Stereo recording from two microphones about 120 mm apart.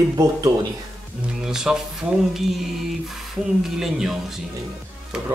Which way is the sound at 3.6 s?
5° right (ahead or behind).